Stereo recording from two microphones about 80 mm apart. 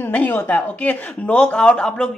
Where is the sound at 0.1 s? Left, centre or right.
Left.